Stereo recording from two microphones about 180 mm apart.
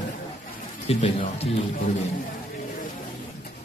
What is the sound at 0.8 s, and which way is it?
Speech, 30° left (ahead or behind).